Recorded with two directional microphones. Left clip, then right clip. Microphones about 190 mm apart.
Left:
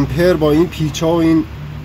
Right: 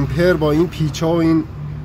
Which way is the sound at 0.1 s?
25° left (ahead or behind).